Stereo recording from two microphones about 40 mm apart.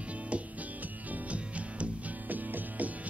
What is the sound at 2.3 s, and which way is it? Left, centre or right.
Music, right.